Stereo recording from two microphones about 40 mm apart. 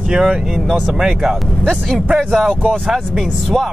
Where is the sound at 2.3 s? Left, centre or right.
Centre.